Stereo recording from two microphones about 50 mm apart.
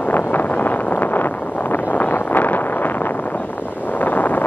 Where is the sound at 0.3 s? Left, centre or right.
Left.